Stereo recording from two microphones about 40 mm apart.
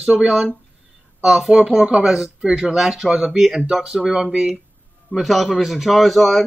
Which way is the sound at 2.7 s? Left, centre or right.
Centre.